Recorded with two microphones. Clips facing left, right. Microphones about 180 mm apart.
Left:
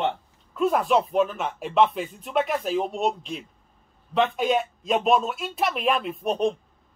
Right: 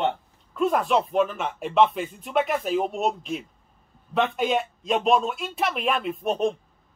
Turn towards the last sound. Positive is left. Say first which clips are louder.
# even
turn(degrees=0)  # may be behind; listen again after turning